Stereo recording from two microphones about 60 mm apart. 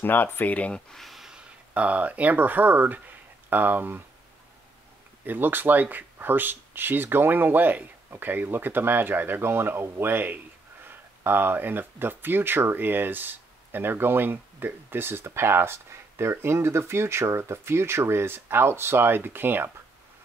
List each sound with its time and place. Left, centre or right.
0.0 s speech: left
0.9 s a sound: centre
1.7 s speech: right
5.2 s speech: right